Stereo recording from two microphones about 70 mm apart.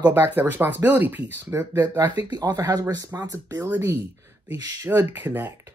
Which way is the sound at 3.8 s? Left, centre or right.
Right.